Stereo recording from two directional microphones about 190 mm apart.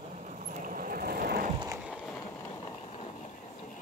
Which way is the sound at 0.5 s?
45° right (ahead or behind).